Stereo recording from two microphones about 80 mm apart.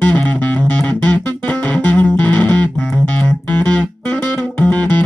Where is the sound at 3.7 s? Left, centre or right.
Centre.